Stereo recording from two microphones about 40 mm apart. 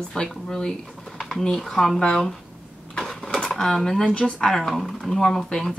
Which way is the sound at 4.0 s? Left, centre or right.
Left.